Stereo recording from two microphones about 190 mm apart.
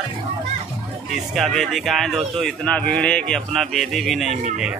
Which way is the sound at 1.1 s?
Centre (ahead or behind).